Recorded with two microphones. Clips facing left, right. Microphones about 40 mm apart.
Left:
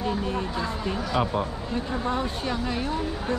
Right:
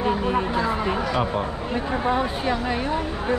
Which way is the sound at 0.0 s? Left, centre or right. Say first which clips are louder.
Right 5 dB; right.